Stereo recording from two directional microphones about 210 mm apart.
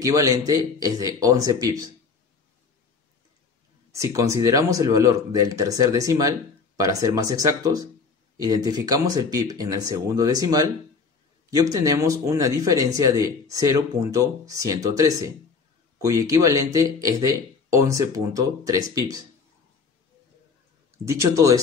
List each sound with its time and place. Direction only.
0.0 s speech: 15° right (ahead or behind)
3.9 s speech: 15° right (ahead or behind)
21.1 s speech: 15° right (ahead or behind)